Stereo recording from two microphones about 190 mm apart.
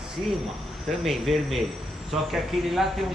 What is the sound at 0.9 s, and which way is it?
Speech, centre (ahead or behind).